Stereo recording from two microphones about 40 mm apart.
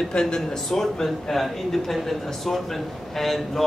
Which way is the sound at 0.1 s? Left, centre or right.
Centre.